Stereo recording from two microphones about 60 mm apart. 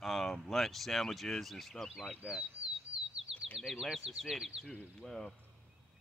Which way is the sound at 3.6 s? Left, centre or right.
Centre.